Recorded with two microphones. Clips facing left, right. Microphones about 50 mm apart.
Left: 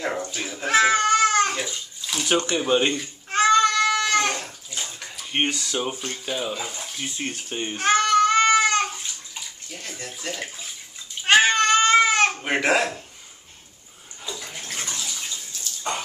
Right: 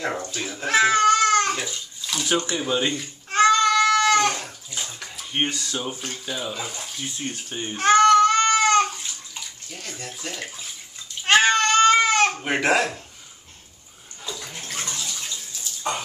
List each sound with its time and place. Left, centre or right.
0.2 s a child's voice: centre
0.5 s bathtub: centre
2.8 s cat: centre
5.4 s a child's voice: centre
5.7 s speech: centre
5.9 s speech: centre
7.2 s speech: left
7.7 s bathtub: centre
11.2 s baby cry: centre
14.2 s bathtub: centre